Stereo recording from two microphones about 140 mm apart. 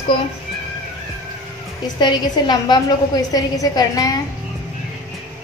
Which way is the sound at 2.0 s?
30° left (ahead or behind).